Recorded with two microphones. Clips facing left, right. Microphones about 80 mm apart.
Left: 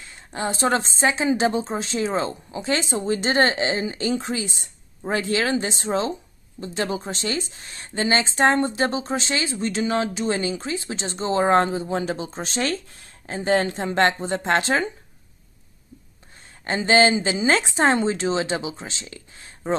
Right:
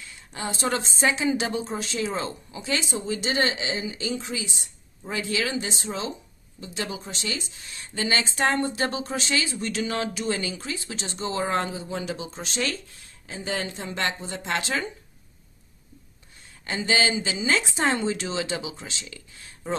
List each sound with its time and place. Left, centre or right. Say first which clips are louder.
0.0 s a woman's voice: left 6 dB; left
16.6 s a woman's voice: left 7 dB; left